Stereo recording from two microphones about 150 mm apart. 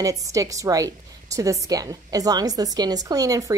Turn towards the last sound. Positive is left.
turn(degrees=-25)  # may be behind; listen again after turning